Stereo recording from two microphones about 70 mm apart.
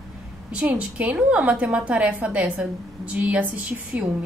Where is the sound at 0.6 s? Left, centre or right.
Right.